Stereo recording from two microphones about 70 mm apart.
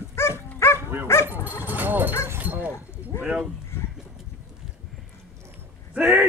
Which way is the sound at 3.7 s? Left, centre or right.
Left.